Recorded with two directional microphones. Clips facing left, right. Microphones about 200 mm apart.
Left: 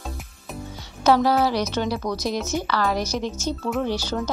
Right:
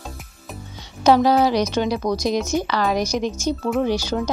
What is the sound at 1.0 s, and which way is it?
A woman's voice, 15° right (ahead or behind).